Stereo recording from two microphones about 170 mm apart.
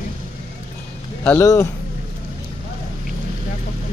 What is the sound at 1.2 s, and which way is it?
Speech, 15° left (ahead or behind).